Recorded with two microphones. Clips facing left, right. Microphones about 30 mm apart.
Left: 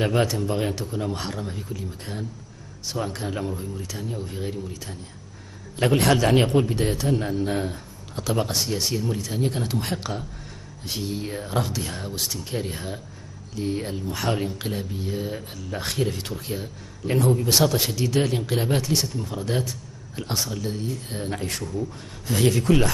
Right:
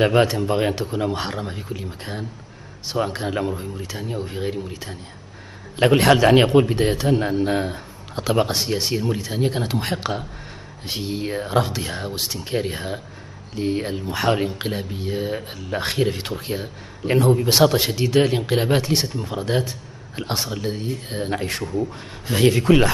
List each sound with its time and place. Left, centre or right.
0.0 s a man's voice: right
5.8 s a man's voice: centre
9.9 s a man's voice: right
12.5 s a man's voice: centre